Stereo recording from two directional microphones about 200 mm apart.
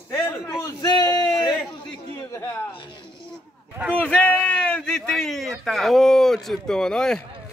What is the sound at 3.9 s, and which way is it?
A man's voice, 5° left (ahead or behind).